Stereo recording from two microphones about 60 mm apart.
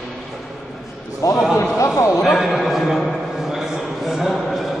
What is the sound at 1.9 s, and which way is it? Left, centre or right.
Speech, left.